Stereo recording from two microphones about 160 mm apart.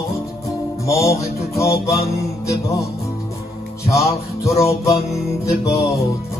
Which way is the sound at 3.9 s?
20° left (ahead or behind).